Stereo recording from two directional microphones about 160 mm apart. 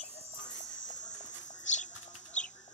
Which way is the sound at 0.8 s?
50° left (ahead or behind).